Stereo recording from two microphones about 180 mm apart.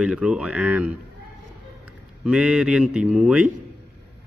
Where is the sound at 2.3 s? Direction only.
5° right (ahead or behind).